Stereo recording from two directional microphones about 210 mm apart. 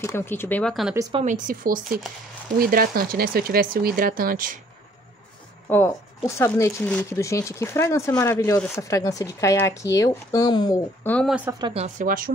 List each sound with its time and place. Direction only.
0.0 s speech: 10° left (ahead or behind)
1.2 s speech: 40° right (ahead or behind)
5.7 s speech: 10° left (ahead or behind)
11.1 s speech: 5° left (ahead or behind)
11.5 s speech: 25° right (ahead or behind); by 12.3 s 40° right (ahead or behind)